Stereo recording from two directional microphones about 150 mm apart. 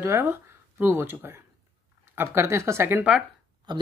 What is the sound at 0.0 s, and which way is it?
Speech, 15° right (ahead or behind).